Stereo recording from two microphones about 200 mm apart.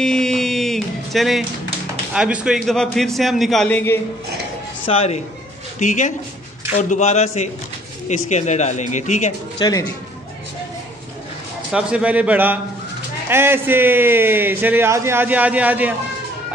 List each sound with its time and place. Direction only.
0.0 s music: 5° left (ahead or behind)
2.1 s a man's voice: 5° right (ahead or behind)
4.8 s speech: 30° left (ahead or behind)
9.6 s speech: 20° left (ahead or behind)
11.7 s speech: 5° right (ahead or behind)